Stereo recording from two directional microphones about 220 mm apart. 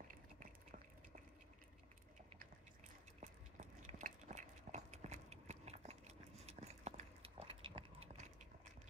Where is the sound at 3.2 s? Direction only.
35° right (ahead or behind).